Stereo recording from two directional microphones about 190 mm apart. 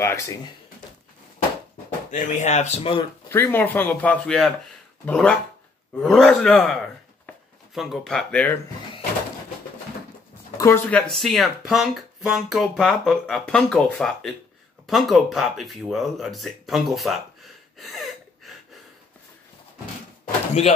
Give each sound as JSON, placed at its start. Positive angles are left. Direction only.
{"t": 0.0, "sound": "a man's voice", "side_deg": 15}
{"t": 2.0, "sound": "speech", "side_deg": 40}
{"t": 3.3, "sound": "a man's voice", "side_deg": 10}
{"t": 10.6, "sound": "speech", "side_deg": 10}
{"t": 20.2, "sound": "a sound", "side_deg": 35}